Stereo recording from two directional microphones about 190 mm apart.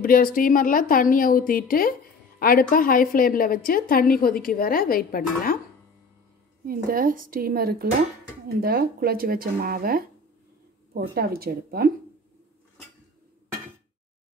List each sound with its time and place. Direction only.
0.0 s a woman's voice: 50° left (ahead or behind)
6.6 s speech: 50° right (ahead or behind)